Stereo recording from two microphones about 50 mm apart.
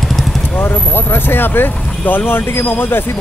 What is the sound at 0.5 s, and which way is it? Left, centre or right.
Speech, left.